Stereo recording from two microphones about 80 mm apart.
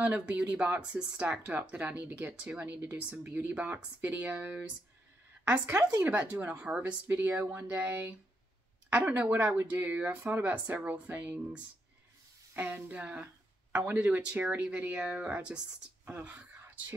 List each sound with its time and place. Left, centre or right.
0.0 s a woman's voice: centre